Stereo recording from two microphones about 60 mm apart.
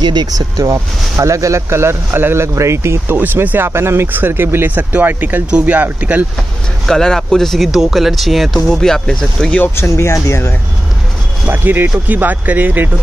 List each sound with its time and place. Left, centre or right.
0.3 s speech: right
3.2 s speech: right
6.9 s speech: centre
9.8 s speech: left
11.4 s speech: right